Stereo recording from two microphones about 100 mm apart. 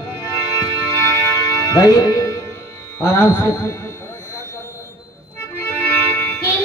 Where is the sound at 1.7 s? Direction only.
35° left (ahead or behind).